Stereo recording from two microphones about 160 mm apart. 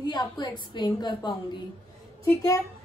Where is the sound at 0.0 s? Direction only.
25° left (ahead or behind).